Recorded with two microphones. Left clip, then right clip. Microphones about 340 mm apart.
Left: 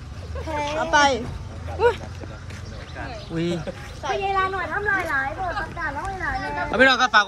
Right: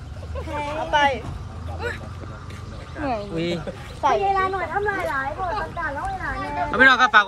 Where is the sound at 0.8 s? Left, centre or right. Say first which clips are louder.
Left 1 dB; left.